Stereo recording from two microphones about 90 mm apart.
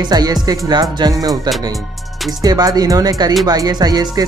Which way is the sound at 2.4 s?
45° right (ahead or behind).